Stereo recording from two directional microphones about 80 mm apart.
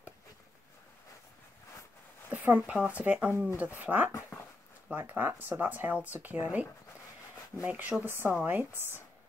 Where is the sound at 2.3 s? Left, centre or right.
Right.